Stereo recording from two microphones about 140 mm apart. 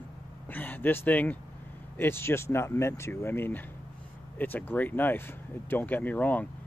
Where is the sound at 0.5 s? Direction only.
15° left (ahead or behind).